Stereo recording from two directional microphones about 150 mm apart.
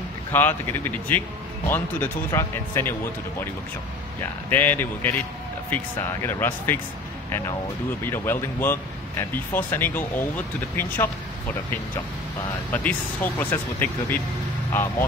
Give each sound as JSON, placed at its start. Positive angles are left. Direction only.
{"t": 0.3, "sound": "speech", "side_deg": 15}
{"t": 8.0, "sound": "speech", "side_deg": 15}
{"t": 12.7, "sound": "speech", "side_deg": 10}